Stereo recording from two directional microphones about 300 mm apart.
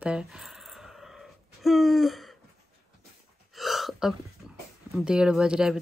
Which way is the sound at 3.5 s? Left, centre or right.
Centre.